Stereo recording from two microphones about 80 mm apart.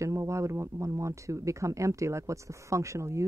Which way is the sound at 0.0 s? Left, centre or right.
Right.